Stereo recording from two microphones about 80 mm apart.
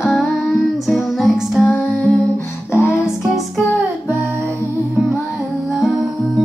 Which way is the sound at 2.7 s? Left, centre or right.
Left.